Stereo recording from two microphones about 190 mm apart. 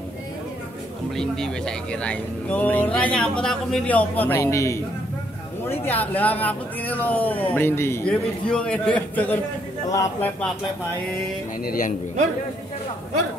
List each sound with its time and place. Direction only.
1.1 s a man's voice: centre (ahead or behind)
11.6 s a man's voice: 50° left (ahead or behind)